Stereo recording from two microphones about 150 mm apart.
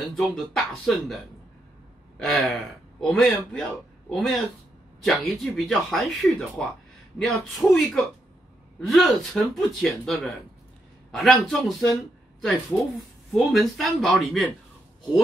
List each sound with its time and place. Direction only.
0.1 s speech: centre (ahead or behind)
2.1 s speech: centre (ahead or behind)